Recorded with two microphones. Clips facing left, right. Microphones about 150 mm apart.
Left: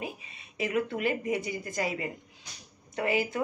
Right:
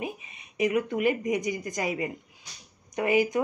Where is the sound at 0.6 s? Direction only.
15° right (ahead or behind).